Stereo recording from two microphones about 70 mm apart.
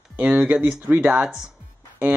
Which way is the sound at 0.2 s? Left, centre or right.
Right.